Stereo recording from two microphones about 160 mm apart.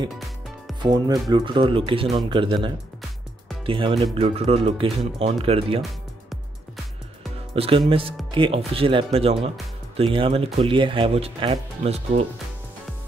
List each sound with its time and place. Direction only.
0.8 s speech: 25° right (ahead or behind)
7.5 s speech: 35° right (ahead or behind)